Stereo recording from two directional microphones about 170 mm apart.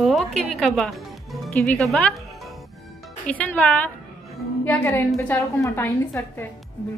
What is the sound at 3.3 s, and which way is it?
A woman's voice, 10° left (ahead or behind).